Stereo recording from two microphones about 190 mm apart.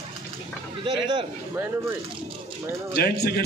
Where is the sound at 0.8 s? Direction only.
25° right (ahead or behind).